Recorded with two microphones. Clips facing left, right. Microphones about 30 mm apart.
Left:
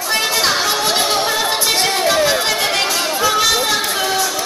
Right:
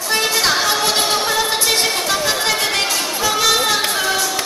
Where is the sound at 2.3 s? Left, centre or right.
Centre.